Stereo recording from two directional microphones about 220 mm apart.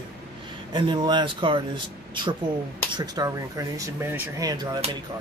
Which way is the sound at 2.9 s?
20° right (ahead or behind).